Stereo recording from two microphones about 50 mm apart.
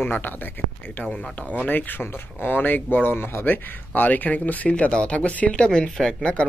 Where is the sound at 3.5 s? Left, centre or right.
Left.